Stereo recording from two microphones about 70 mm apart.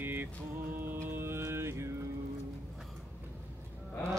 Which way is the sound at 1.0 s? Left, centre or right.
Right.